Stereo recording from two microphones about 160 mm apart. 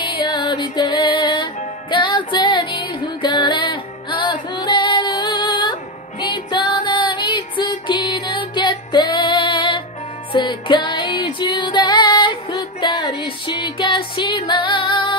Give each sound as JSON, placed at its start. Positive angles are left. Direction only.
{"t": 0.0, "sound": "music", "side_deg": 30}